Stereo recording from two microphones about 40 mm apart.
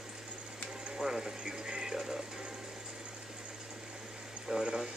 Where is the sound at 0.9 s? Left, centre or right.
Centre.